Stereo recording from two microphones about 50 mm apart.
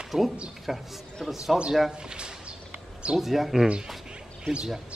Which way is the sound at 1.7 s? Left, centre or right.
Centre.